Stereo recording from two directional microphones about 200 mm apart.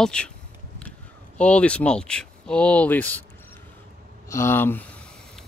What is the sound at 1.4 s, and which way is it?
Speech, 5° left (ahead or behind).